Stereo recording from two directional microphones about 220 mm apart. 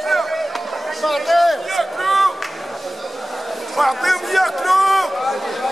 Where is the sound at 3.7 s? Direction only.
Centre (ahead or behind).